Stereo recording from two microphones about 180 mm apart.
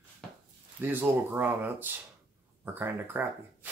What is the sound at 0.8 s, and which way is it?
Speech, 10° right (ahead or behind).